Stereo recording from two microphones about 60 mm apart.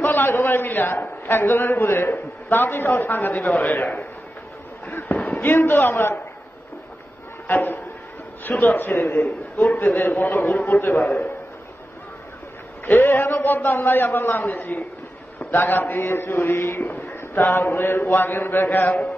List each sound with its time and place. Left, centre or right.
0.0 s a man's voice: left
5.4 s a man's voice: left
7.4 s a man's voice: left
12.8 s a man's voice: left
16.8 s a man's voice: left